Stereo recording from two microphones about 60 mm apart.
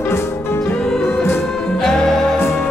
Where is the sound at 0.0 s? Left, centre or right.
Left.